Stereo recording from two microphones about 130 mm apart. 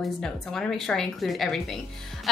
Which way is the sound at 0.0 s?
5° left (ahead or behind).